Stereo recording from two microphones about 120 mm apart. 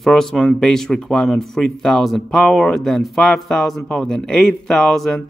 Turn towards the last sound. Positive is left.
turn(degrees=0)  # may be behind; listen again after turning